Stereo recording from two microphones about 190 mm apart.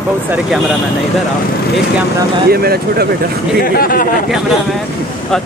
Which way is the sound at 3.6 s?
50° left (ahead or behind).